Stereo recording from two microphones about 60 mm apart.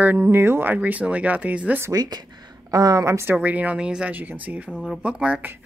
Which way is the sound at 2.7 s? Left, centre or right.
Right.